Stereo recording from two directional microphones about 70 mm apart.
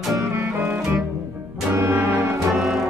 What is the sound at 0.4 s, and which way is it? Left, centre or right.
Music, right.